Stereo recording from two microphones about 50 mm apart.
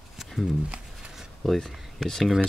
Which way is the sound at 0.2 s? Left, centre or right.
Centre.